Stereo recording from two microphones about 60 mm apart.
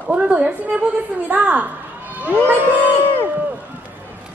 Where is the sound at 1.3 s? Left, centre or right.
Right.